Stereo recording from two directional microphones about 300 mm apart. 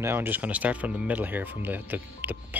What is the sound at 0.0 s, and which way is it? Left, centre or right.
Speech, centre.